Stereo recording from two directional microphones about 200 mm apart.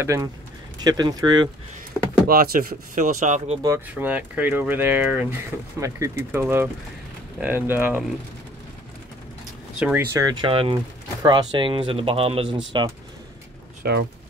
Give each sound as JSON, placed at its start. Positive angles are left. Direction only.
{"t": 0.0, "sound": "speech", "side_deg": -15}
{"t": 2.2, "sound": "speech", "side_deg": -45}
{"t": 3.6, "sound": "speech", "side_deg": -10}
{"t": 9.8, "sound": "speech", "side_deg": -5}
{"t": 10.1, "sound": "speech", "side_deg": -20}
{"t": 13.8, "sound": "speech", "side_deg": -50}